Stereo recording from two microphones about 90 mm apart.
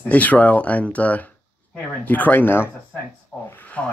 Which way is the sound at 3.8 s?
10° left (ahead or behind).